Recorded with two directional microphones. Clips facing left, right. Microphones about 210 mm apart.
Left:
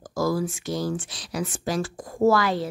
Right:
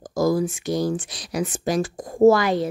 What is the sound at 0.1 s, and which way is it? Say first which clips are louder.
Speech: right 4 dB; 20° right (ahead or behind).